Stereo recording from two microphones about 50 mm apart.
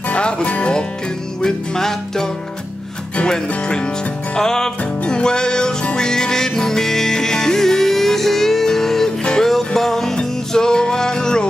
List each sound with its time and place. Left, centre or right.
0.1 s music: left
1.4 s music: centre
3.2 s speech: left
4.4 s music: centre